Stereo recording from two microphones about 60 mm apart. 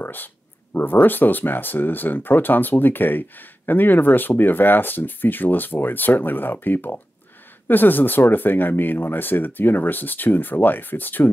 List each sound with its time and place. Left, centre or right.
0.0 s speech: left